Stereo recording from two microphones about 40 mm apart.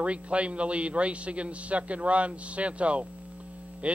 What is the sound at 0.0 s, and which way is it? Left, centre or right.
Speech, right.